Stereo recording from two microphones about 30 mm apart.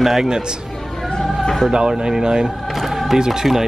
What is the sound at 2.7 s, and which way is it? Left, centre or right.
Music, centre.